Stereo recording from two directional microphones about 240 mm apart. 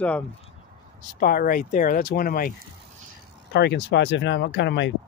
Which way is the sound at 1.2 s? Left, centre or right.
Left.